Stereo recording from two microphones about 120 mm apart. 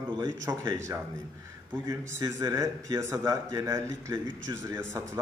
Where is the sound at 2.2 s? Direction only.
25° right (ahead or behind).